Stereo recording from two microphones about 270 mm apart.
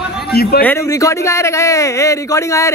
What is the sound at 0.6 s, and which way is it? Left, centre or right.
Speech, centre.